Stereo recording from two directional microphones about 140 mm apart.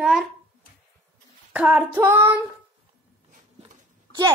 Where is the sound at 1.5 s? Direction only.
10° right (ahead or behind).